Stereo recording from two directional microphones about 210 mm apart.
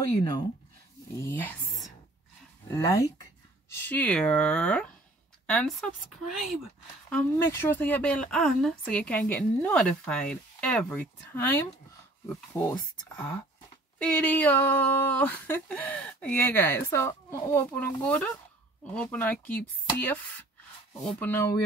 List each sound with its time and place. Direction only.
1.2 s speech: 10° left (ahead or behind)
12.5 s speech: 10° left (ahead or behind)